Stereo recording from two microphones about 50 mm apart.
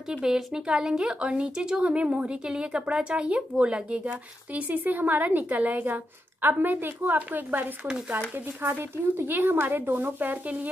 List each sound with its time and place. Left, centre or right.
0.1 s speech: centre
6.4 s a woman's voice: right